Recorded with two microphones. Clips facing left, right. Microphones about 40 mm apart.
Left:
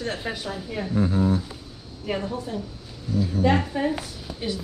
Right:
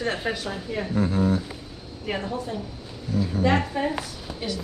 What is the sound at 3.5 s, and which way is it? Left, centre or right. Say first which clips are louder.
Speech: left 1 dB; centre.